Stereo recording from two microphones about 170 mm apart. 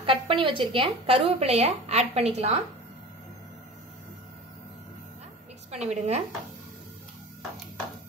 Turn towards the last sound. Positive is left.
turn(degrees=-40)  # may be behind; listen again after turning